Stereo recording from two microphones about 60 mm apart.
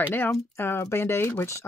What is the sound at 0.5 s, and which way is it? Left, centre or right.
Speech, left.